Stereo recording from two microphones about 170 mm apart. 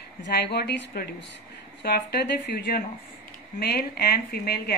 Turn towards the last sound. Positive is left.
turn(degrees=65)  # may be behind; listen again after turning